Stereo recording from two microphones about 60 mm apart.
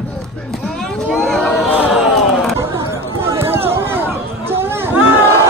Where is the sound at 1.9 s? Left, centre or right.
Centre.